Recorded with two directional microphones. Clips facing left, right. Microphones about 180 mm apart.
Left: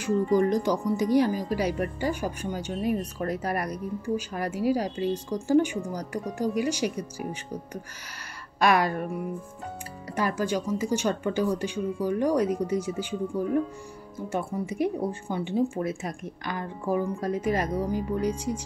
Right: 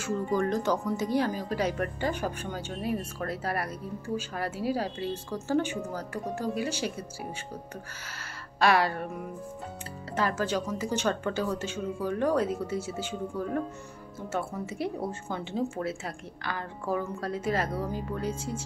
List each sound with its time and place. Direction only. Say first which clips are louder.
0.0 s a woman's voice: left 5 dB; 15° left (ahead or behind)
8.5 s a woman's voice: left 2 dB; 15° left (ahead or behind)
10.1 s a woman's voice: left 2 dB; 10° left (ahead or behind)